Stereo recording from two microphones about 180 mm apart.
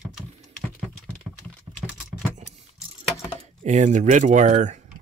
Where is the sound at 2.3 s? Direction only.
40° right (ahead or behind).